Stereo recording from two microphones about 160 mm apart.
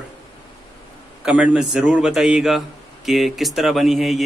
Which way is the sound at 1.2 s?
10° right (ahead or behind).